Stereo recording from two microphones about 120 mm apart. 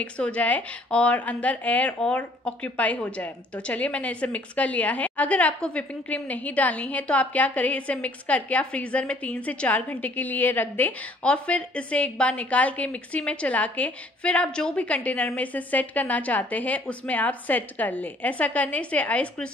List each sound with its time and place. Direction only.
0.0 s a woman's voice: 10° left (ahead or behind)